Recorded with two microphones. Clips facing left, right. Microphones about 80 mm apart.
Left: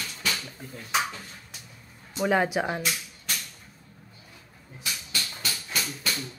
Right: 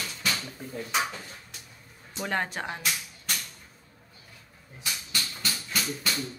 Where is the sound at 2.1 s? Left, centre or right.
Centre.